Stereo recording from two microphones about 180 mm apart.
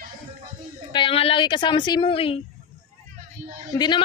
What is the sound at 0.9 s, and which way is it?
A woman's voice, 30° left (ahead or behind).